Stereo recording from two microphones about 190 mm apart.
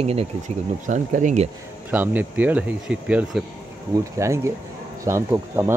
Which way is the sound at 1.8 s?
10° right (ahead or behind).